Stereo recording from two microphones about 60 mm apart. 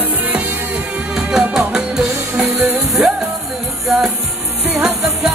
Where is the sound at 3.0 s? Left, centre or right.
Right.